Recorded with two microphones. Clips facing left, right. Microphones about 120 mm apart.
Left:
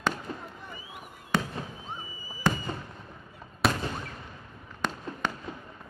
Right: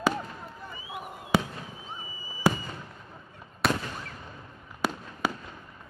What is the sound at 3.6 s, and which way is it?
Fireworks, centre (ahead or behind).